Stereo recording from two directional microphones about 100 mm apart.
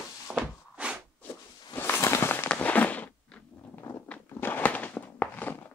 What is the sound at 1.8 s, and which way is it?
Walk, 25° left (ahead or behind).